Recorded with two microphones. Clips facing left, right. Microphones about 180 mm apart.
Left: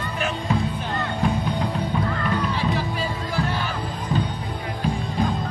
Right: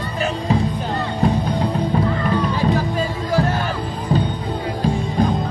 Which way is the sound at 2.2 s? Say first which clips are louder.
Right 5 dB; 45° right (ahead or behind).